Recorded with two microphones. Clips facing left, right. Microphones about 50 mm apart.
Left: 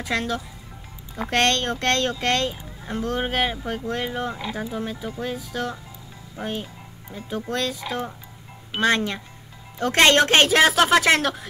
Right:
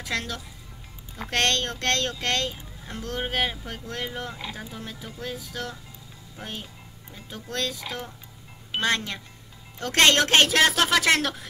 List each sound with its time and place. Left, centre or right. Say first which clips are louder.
0.0 s speech: left 5 dB; centre